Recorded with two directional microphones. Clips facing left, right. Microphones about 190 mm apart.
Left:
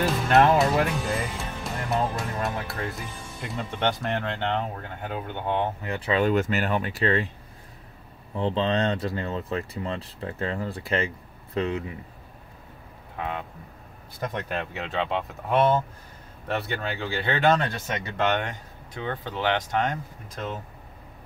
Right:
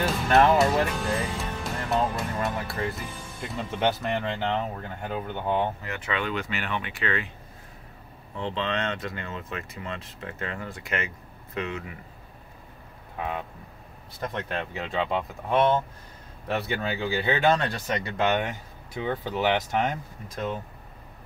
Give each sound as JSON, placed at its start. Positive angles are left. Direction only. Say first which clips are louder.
{"t": 0.0, "sound": "speech", "louder": "left 1 dB", "side_deg": 0}
{"t": 5.9, "sound": "speech", "louder": "left 7 dB", "side_deg": 30}
{"t": 8.4, "sound": "speech", "louder": "left 5 dB", "side_deg": 35}
{"t": 14.3, "sound": "speech", "louder": "even", "side_deg": 0}